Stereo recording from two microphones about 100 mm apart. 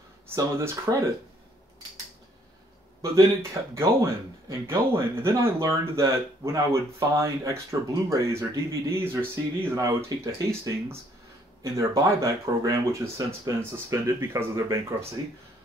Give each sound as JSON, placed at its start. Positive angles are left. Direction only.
{"t": 0.4, "sound": "speech", "side_deg": -30}
{"t": 3.7, "sound": "speech", "side_deg": -30}